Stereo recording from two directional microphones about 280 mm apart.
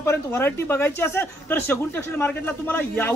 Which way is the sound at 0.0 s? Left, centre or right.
Centre.